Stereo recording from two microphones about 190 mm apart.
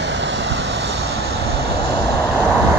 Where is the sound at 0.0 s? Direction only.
70° right (ahead or behind).